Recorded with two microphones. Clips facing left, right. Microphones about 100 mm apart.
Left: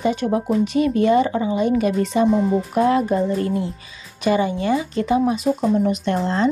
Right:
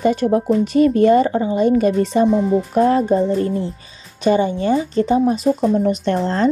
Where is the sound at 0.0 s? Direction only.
45° right (ahead or behind).